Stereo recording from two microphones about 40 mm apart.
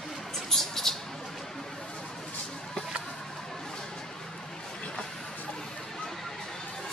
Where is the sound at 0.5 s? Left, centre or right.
Centre.